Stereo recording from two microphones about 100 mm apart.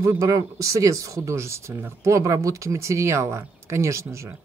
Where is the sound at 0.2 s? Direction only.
35° right (ahead or behind).